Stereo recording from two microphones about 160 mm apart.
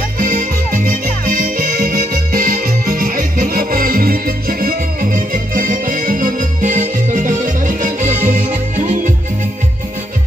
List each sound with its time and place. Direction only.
0.2 s music: 60° right (ahead or behind)